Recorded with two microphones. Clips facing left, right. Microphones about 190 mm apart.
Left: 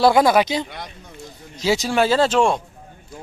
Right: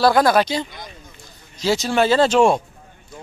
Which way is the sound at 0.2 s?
10° left (ahead or behind).